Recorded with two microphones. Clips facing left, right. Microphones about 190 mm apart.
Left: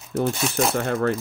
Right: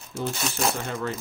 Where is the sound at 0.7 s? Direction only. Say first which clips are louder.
Left 8 dB; 60° left (ahead or behind).